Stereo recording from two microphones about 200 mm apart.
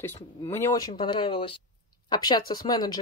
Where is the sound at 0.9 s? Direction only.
25° left (ahead or behind).